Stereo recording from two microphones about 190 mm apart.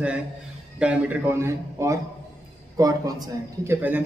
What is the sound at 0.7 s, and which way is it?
A man's voice, 10° right (ahead or behind).